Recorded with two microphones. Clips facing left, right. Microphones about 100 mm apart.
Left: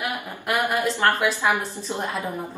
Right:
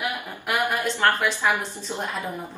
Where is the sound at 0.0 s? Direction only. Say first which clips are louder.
Left 1 dB; 10° left (ahead or behind).